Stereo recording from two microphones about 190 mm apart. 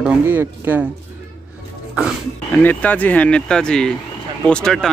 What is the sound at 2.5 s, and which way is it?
Speech, 10° left (ahead or behind).